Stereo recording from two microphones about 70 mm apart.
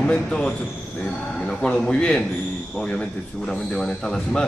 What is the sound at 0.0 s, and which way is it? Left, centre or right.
A man's voice, centre.